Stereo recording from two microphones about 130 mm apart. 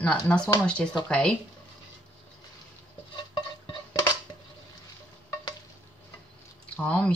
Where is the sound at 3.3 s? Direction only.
35° left (ahead or behind).